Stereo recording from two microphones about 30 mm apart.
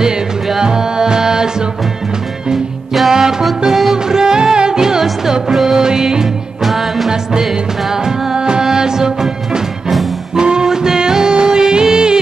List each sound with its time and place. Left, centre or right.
0.6 s music: right
3.1 s music: centre
4.1 s music: right
5.5 s music: centre
5.8 s music: centre
6.6 s music: centre
8.4 s music: right